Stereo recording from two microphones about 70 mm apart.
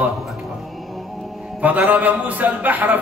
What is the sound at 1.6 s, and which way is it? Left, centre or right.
A man's voice, right.